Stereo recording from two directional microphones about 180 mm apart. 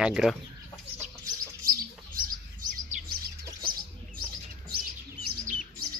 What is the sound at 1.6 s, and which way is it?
Bird, 50° right (ahead or behind).